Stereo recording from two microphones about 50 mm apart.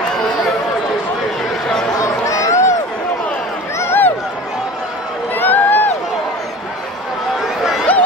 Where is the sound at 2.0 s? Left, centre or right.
Left.